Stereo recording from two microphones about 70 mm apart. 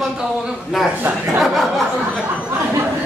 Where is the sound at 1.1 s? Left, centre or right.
Right.